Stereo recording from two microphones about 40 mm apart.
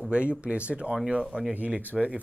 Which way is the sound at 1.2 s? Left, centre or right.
Centre.